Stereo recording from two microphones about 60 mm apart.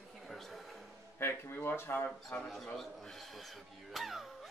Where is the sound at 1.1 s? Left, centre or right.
Left.